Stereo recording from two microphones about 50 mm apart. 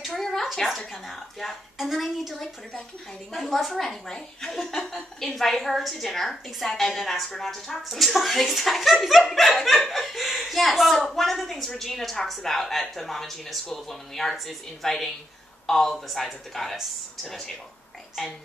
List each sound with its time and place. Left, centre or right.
0.0 s a woman's voice: centre